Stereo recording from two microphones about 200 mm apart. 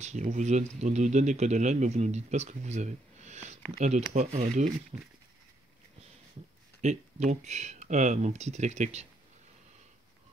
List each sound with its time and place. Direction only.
0.0 s speech: 35° right (ahead or behind)
6.8 s speech: 35° right (ahead or behind)